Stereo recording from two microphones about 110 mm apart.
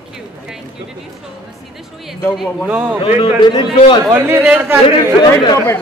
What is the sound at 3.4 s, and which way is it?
Speech, 45° left (ahead or behind).